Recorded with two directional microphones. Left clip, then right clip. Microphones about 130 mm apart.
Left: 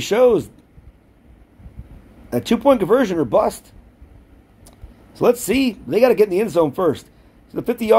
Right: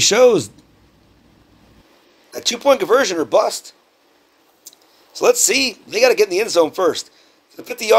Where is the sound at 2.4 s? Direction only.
5° left (ahead or behind).